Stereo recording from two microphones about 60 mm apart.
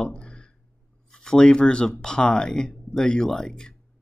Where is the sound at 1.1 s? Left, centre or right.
Centre.